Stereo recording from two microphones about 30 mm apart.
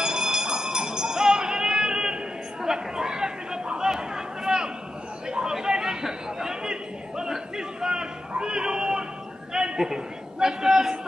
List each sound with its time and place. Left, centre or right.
0.0 s music: right
2.6 s chatter: centre
8.4 s music: right
9.5 s a sound: centre